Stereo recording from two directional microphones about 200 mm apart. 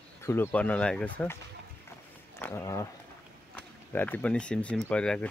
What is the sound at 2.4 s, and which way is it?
Speech, 15° left (ahead or behind).